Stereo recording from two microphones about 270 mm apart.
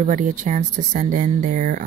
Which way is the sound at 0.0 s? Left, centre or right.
Right.